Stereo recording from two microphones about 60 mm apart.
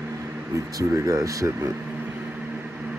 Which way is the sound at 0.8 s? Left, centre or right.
Right.